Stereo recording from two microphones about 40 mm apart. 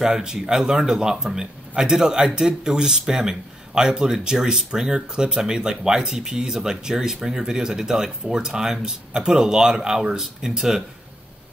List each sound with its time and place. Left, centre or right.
0.0 s speech: centre